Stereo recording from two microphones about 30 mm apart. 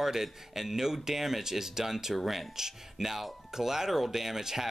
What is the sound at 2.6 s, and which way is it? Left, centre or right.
Speech, centre.